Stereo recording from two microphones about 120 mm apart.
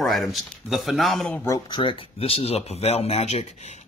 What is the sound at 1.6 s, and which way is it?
Speech, 40° left (ahead or behind).